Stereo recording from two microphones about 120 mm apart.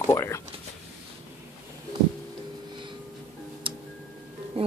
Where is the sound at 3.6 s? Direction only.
45° right (ahead or behind).